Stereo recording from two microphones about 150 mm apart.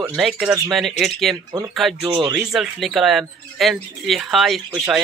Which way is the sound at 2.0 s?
25° right (ahead or behind).